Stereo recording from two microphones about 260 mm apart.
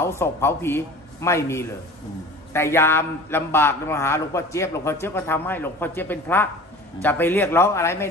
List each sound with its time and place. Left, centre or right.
0.0 s a man's voice: centre